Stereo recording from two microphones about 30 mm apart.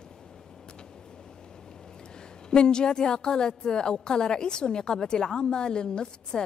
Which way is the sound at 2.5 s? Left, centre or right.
Left.